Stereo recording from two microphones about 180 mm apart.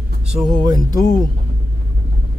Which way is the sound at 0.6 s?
25° right (ahead or behind).